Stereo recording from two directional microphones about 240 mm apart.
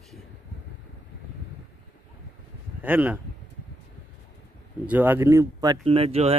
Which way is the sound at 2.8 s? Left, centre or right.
Centre.